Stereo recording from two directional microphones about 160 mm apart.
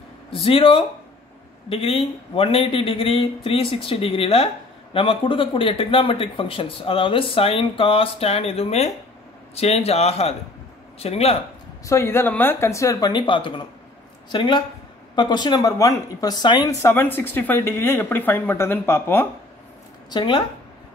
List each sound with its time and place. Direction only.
0.3 s speech: 35° left (ahead or behind)
11.8 s a woman's voice: 20° left (ahead or behind)
20.1 s speech: 30° left (ahead or behind)